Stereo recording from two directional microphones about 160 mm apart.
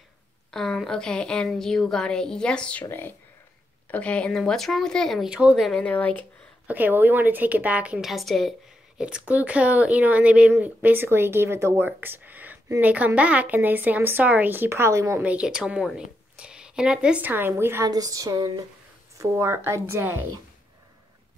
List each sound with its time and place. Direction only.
0.5 s a woman's voice: 5° left (ahead or behind)
6.7 s a woman's voice: 10° right (ahead or behind)